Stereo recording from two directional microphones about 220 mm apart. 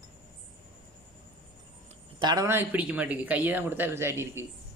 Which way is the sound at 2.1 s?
15° right (ahead or behind).